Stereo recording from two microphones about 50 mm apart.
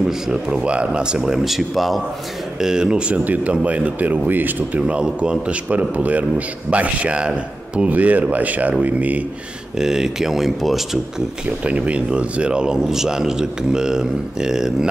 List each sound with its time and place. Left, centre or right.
0.0 s a man's voice: centre
2.6 s a man's voice: centre; by 4.8 s right
4.8 s speech: right
7.9 s speech: right
9.8 s a man's voice: centre
11.6 s a man's voice: right